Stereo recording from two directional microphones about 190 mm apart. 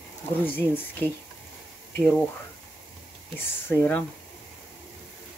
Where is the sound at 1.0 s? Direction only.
10° left (ahead or behind).